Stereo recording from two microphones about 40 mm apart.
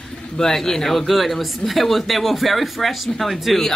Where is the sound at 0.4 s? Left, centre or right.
Centre.